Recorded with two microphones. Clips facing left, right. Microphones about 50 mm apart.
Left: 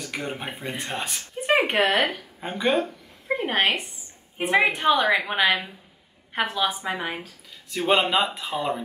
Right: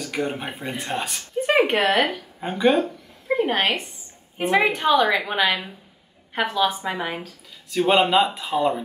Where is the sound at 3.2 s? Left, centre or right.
Centre.